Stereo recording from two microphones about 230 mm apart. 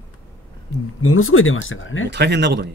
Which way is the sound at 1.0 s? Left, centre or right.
Left.